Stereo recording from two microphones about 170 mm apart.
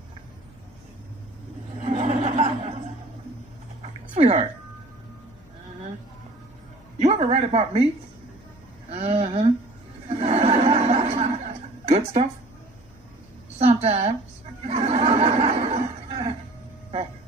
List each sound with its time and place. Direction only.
1.8 s chuckle: 40° right (ahead or behind)
4.1 s speech: 40° right (ahead or behind)
7.0 s speech: 40° right (ahead or behind)
8.9 s a sound: 35° right (ahead or behind)
10.0 s chuckle: 35° right (ahead or behind)
13.6 s a woman's voice: 35° right (ahead or behind)
14.9 s a sound: 40° right (ahead or behind)